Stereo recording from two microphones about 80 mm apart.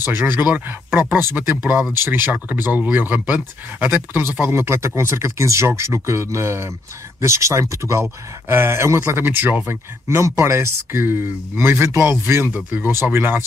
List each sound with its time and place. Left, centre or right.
0.0 s speech: right